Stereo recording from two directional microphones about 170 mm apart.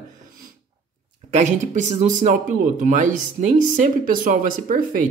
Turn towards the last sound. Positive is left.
turn(degrees=-55)  # may be behind; listen again after turning